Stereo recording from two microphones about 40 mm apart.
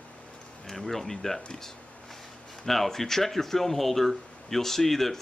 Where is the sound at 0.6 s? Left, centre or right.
Centre.